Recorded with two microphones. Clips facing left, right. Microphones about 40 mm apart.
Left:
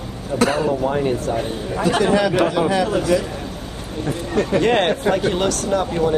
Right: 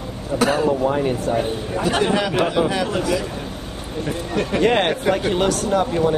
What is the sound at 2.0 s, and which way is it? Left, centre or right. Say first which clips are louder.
A man's voice: left 3 dB; right.